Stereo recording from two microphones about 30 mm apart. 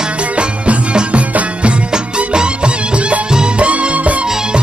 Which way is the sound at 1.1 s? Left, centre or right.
Right.